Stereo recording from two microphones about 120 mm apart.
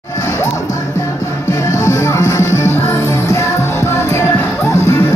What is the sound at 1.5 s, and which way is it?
Music, 25° left (ahead or behind).